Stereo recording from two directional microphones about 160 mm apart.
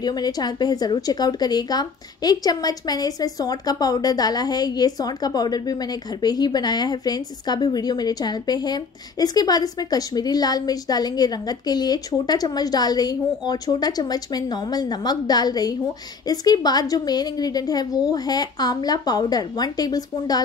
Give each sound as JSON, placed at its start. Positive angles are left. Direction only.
{"t": 0.0, "sound": "a woman's voice", "side_deg": 25}